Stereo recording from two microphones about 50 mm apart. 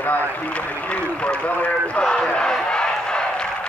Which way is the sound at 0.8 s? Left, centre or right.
Left.